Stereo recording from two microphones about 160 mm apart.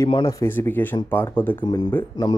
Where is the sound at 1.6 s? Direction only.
25° left (ahead or behind).